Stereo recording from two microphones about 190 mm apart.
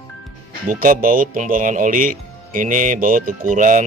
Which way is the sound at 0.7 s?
45° right (ahead or behind).